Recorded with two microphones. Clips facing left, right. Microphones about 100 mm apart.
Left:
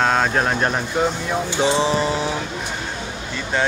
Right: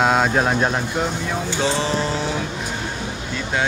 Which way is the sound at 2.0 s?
5° left (ahead or behind).